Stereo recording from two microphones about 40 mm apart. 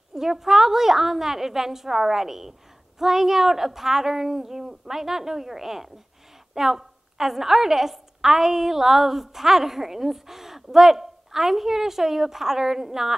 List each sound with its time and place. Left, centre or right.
0.1 s a woman's voice: centre